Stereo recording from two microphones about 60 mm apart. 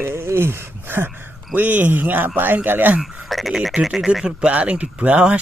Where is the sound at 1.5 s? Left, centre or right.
Right.